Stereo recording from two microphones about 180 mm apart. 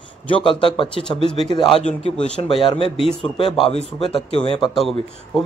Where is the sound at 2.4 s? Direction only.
30° left (ahead or behind).